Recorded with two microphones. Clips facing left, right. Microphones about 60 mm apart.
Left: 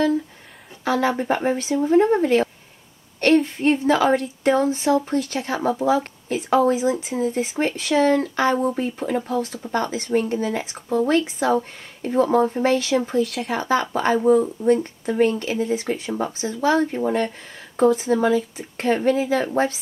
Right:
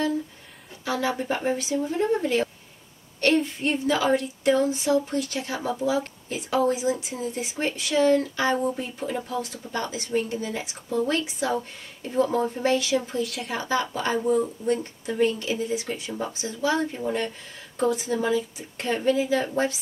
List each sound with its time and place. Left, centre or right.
0.8 s speech: left
3.6 s speech: left